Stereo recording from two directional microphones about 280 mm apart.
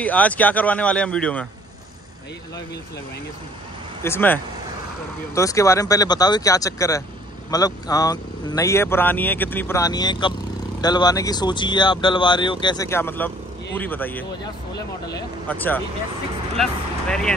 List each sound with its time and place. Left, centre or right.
0.0 s speech: centre
4.0 s speech: centre
14.7 s speech: left
15.4 s speech: centre